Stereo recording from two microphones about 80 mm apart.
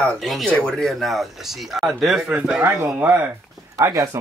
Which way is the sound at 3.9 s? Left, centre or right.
Right.